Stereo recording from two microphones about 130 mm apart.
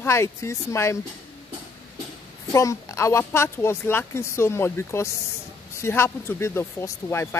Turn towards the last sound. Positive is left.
turn(degrees=20)  # may be behind; listen again after turning